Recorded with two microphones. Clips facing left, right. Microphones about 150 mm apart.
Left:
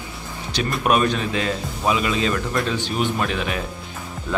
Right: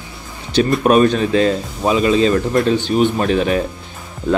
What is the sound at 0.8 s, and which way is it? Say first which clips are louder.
A man's voice: right 5 dB; 40° right (ahead or behind).